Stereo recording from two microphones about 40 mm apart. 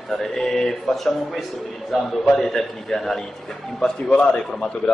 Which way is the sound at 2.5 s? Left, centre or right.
Centre.